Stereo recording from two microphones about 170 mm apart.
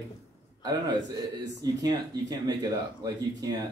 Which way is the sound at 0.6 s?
25° right (ahead or behind).